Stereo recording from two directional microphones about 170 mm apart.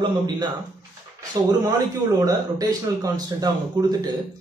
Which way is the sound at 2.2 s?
20° right (ahead or behind).